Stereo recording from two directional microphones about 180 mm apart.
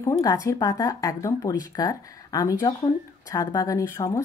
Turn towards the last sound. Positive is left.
turn(degrees=15)  # may be behind; listen again after turning